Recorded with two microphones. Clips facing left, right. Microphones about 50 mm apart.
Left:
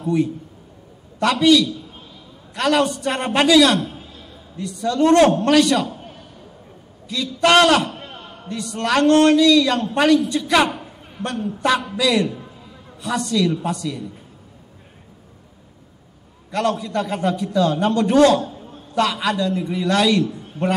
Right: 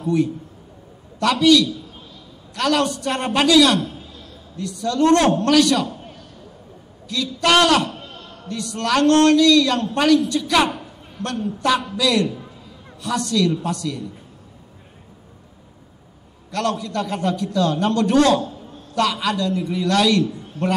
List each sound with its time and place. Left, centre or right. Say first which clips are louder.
0.0 s a man's voice: even; centre
1.4 s a man's voice: even; centre
8.0 s a man's voice: left 1 dB; centre
16.5 s a man's voice: left 2 dB; centre